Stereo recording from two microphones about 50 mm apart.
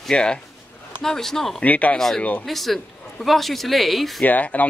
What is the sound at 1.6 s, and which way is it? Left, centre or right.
Speech, left.